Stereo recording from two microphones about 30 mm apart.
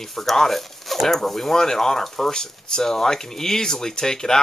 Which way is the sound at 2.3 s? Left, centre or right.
Left.